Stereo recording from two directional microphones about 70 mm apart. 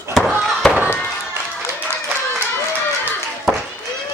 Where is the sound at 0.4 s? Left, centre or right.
Centre.